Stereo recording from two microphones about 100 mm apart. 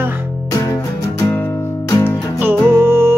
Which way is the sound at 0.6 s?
30° left (ahead or behind).